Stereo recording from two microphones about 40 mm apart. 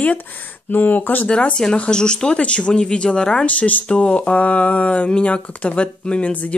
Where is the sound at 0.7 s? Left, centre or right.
Left.